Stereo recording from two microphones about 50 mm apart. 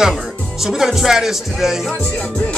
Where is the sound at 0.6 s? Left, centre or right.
Centre.